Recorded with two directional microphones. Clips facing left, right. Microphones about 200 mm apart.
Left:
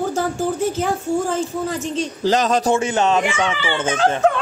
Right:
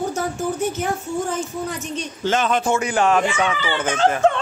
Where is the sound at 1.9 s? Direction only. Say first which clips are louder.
Left 3 dB; 35° left (ahead or behind).